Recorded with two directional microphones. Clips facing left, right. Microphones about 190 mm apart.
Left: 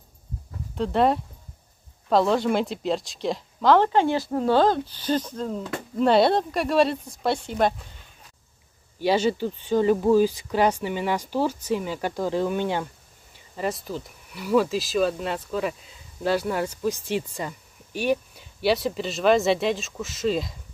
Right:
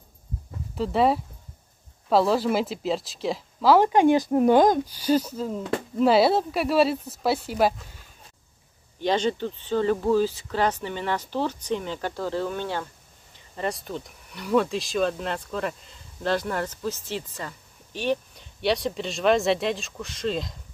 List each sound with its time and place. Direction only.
0.7 s speech: 5° right (ahead or behind)
9.0 s speech: 10° left (ahead or behind)
13.6 s speech: centre (ahead or behind)